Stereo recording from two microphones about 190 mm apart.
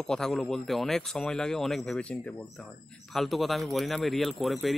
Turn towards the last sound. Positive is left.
turn(degrees=0)  # may be behind; listen again after turning